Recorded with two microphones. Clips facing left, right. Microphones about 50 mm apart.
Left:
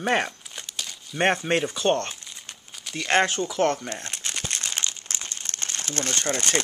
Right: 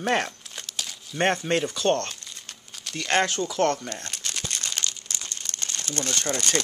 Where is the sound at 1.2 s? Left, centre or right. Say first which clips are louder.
Left 1 dB; centre.